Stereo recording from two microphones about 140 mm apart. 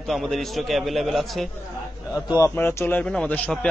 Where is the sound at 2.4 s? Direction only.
15° left (ahead or behind).